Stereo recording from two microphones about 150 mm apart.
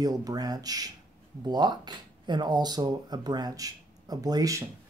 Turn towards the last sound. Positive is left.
turn(degrees=-25)  # may be behind; listen again after turning